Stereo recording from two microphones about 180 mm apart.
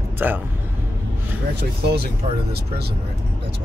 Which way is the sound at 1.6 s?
65° right (ahead or behind).